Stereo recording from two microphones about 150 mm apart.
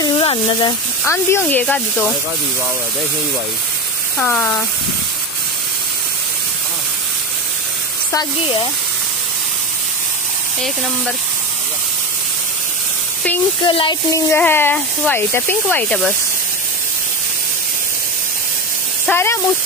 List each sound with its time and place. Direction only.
0.0 s a sound: 35° left (ahead or behind)
1.0 s speech: 15° left (ahead or behind)
4.2 s speech: 10° left (ahead or behind)
8.1 s speech: 25° left (ahead or behind)
13.7 s speech: 35° left (ahead or behind)
14.1 s speech: 15° left (ahead or behind)
19.0 s speech: 15° left (ahead or behind)